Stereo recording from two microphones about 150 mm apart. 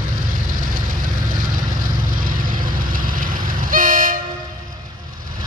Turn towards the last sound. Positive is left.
turn(degrees=-60)  # may be behind; listen again after turning